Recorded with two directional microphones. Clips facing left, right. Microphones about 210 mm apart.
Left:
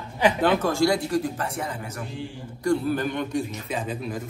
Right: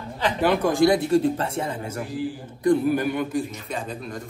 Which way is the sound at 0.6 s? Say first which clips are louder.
Right 3 dB; 20° right (ahead or behind).